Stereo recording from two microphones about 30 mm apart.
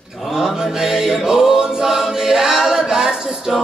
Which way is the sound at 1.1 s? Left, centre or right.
Centre.